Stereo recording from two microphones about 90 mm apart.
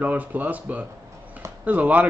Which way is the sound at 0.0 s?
15° right (ahead or behind).